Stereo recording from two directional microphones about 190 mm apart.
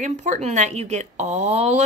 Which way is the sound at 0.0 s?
40° right (ahead or behind).